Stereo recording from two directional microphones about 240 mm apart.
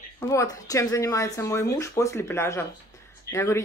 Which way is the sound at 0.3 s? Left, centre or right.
Centre.